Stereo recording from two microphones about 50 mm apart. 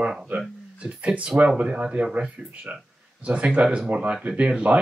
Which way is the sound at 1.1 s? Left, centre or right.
Right.